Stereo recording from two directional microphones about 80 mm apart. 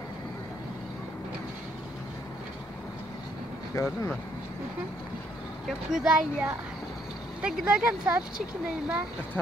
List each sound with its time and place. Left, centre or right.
3.7 s speech: left
5.7 s speech: centre